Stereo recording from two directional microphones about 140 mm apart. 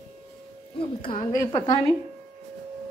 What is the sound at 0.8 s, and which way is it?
Speech, 40° left (ahead or behind).